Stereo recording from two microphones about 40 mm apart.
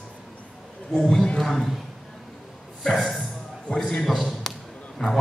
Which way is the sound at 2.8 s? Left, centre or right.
Centre.